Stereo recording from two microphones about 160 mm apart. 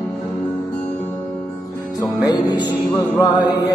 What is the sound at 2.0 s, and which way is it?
Music, 25° left (ahead or behind).